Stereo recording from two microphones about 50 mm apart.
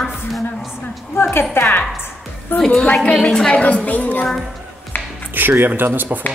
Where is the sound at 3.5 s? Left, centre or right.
Left.